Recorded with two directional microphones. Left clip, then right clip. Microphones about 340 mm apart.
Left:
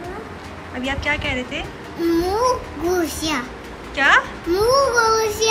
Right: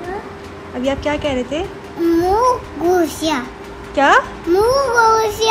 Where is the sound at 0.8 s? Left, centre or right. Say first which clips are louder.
Right 4 dB; centre.